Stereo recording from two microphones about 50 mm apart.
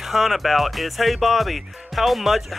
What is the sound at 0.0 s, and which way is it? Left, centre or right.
Speech, centre.